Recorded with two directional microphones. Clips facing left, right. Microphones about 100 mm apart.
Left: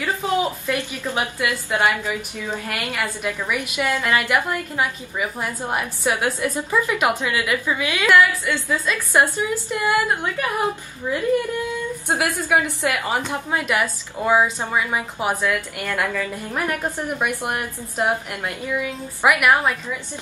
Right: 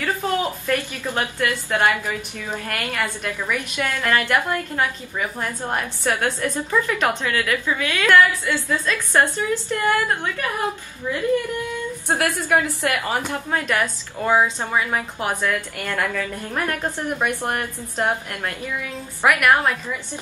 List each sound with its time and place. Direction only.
0.4 s a woman's voice: 15° left (ahead or behind)